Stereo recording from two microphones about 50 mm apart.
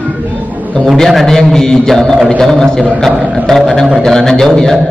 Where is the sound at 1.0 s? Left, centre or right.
Centre.